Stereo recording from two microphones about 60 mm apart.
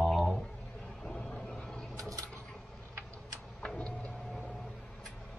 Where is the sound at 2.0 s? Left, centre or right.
Right.